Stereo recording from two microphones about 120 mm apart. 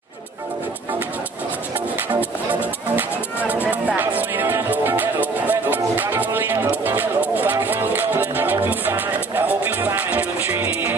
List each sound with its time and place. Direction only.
2.1 s music: 15° right (ahead or behind)